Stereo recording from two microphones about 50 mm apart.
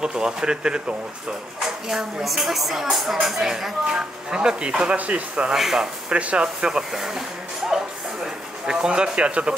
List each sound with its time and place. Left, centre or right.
0.0 s speech: centre
4.3 s speech: centre
5.3 s speech: centre
6.0 s speech: right
6.4 s speech: centre